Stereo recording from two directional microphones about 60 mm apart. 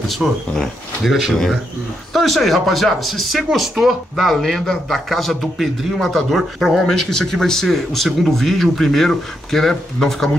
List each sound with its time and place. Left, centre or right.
0.2 s speech: centre